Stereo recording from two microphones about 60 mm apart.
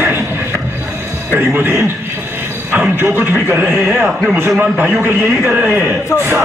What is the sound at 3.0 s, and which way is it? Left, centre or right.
Speech, right.